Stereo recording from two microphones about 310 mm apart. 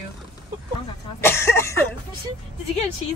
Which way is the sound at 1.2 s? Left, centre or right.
Centre.